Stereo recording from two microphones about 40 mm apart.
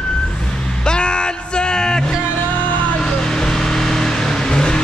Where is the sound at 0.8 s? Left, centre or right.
Left.